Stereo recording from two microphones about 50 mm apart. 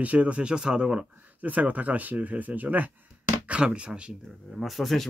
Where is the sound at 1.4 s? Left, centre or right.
Right.